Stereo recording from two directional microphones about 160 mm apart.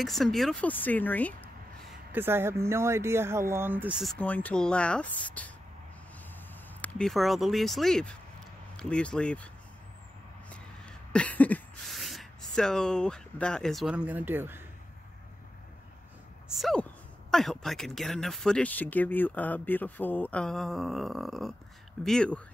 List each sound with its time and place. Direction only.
0.0 s speech: centre (ahead or behind)
2.1 s speech: 15° right (ahead or behind)
4.0 s speech: 5° left (ahead or behind)
6.8 s speech: 5° left (ahead or behind)
11.1 s speech: 10° left (ahead or behind); by 14.6 s 15° right (ahead or behind)
16.4 s speech: centre (ahead or behind)